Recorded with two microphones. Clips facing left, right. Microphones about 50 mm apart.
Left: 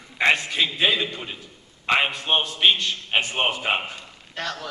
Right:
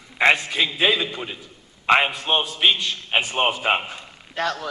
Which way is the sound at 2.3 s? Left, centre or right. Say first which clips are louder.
Right 1 dB; centre.